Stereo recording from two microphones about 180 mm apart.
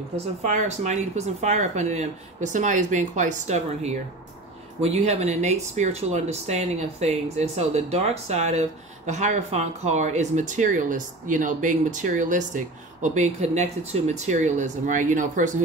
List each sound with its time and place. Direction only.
0.4 s speech: 40° right (ahead or behind)